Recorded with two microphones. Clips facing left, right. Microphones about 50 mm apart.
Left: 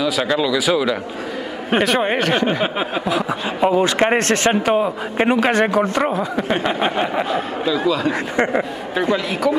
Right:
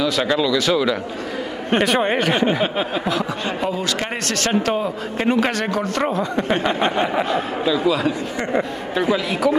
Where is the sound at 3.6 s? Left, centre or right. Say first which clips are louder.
Left 11 dB; left.